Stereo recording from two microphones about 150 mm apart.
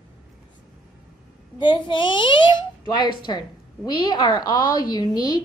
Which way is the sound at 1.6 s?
35° left (ahead or behind).